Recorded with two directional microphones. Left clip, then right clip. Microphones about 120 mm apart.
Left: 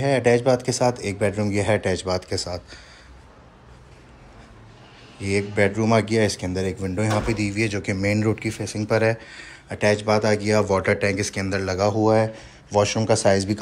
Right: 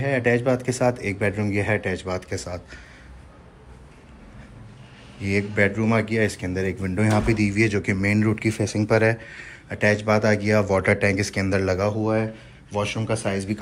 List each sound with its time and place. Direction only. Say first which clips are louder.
0.0 s speech: left 3 dB; 40° left (ahead or behind)
5.2 s speech: left 1 dB; 30° left (ahead or behind)
6.5 s speech: even; 20° left (ahead or behind)
8.4 s speech: right 4 dB; 5° left (ahead or behind)
8.9 s speech: even; 25° left (ahead or behind)
11.9 s a man's voice: left 5 dB; 65° left (ahead or behind)